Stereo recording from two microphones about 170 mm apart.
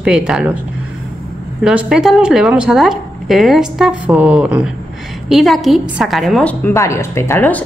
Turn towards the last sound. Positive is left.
turn(degrees=10)  # may be behind; listen again after turning